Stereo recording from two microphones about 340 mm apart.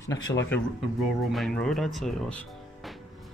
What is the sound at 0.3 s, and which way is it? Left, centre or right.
Speech, centre.